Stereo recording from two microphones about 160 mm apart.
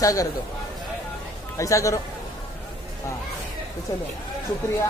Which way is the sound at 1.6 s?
20° left (ahead or behind).